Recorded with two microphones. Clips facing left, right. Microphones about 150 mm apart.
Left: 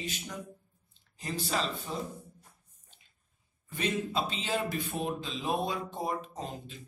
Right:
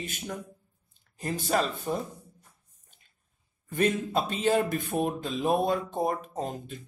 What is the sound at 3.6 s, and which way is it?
Speech, 50° right (ahead or behind).